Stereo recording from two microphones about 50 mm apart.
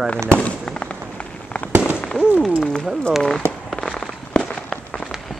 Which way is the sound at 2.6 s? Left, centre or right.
Centre.